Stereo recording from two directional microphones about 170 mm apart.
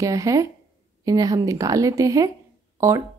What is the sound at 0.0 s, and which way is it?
A woman's voice, 20° right (ahead or behind).